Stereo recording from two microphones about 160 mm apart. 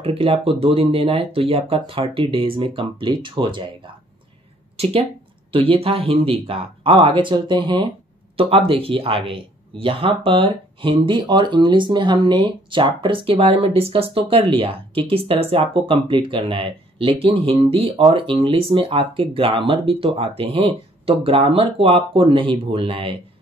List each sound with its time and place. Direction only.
0.0 s speech: 35° right (ahead or behind)